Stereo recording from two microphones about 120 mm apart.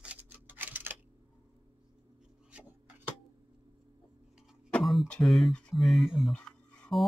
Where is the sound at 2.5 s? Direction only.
10° right (ahead or behind).